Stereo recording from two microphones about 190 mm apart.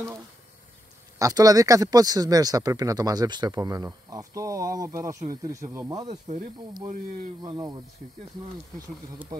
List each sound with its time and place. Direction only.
1.2 s speech: 20° right (ahead or behind)
6.0 s speech: 40° right (ahead or behind)
7.4 s speech: 20° right (ahead or behind)